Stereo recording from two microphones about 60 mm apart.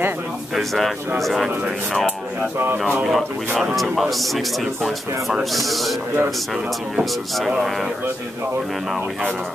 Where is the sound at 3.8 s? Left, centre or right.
Centre.